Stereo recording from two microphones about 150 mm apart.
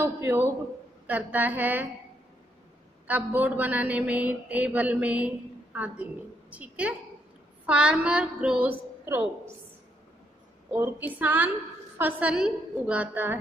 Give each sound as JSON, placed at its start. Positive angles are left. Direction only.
{"t": 0.0, "sound": "a man's voice", "side_deg": -15}
{"t": 3.1, "sound": "a man's voice", "side_deg": -10}
{"t": 10.7, "sound": "a man's voice", "side_deg": -15}